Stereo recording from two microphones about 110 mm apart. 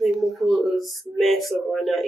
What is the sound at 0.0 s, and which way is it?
Speech, centre (ahead or behind).